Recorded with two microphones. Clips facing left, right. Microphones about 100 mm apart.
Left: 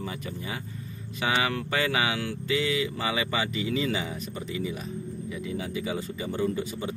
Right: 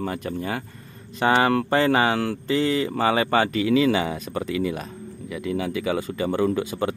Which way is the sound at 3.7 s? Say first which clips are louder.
Right 9 dB; 85° right.